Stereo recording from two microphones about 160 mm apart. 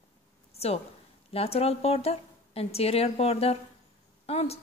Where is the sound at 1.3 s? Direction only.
40° left (ahead or behind).